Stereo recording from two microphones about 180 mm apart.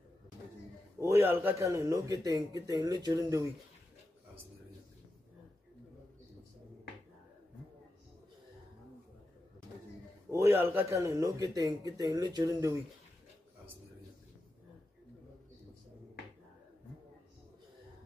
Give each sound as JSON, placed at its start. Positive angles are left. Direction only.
{"t": 0.9, "sound": "speech", "side_deg": -15}
{"t": 10.3, "sound": "speech", "side_deg": -15}